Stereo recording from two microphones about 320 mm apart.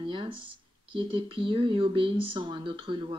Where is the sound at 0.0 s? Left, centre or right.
Centre.